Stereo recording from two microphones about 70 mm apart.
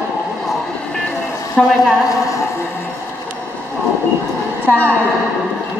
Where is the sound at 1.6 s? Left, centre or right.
Centre.